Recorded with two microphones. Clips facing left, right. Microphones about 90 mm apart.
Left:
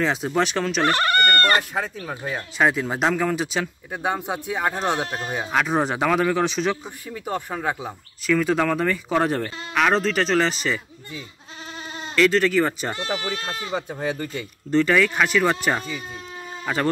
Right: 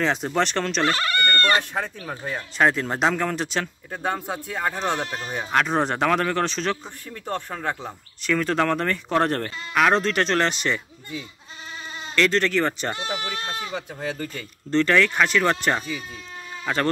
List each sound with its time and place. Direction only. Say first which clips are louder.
0.0 s speech: left 1 dB; 5° left (ahead or behind)
12.2 s speech: left 3 dB; 5° left (ahead or behind)
13.1 s speech: left 2 dB; 30° left (ahead or behind)
13.9 s speech: left 3 dB; 20° left (ahead or behind)
14.7 s speech: left 1 dB; 10° left (ahead or behind)